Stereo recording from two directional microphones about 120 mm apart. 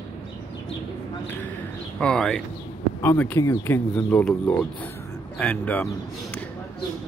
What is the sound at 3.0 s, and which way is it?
Speech, 20° left (ahead or behind).